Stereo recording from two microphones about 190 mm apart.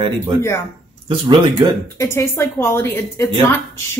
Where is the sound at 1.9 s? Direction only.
15° left (ahead or behind).